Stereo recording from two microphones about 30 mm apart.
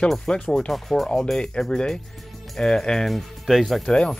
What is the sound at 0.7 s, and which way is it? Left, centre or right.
Speech, centre.